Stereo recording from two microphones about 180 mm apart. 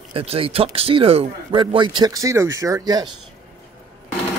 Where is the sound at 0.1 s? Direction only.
30° right (ahead or behind).